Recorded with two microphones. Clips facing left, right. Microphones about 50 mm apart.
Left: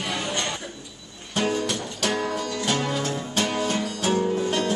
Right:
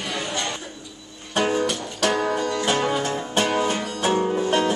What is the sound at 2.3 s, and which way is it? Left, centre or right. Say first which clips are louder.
Music: right 4 dB; right.